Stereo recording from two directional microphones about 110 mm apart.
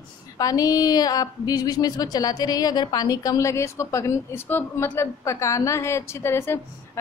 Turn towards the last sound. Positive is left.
turn(degrees=20)  # may be behind; listen again after turning